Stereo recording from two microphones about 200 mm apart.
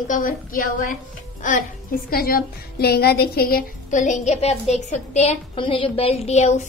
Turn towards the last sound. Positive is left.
turn(degrees=35)  # may be behind; listen again after turning